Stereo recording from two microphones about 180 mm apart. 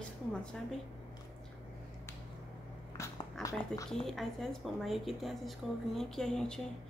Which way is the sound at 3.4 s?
20° left (ahead or behind).